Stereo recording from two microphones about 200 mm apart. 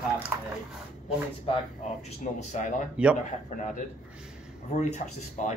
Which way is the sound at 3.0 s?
5° right (ahead or behind).